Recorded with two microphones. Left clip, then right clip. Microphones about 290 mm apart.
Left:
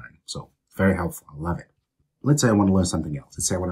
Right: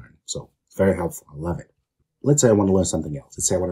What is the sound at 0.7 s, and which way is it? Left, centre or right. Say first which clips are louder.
Speech: right 3 dB; centre.